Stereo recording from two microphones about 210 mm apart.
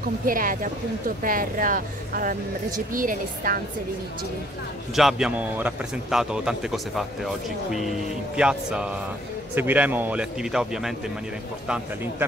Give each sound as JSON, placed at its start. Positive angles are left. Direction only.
{"t": 0.3, "sound": "speech", "side_deg": -40}
{"t": 4.9, "sound": "a man's voice", "side_deg": 0}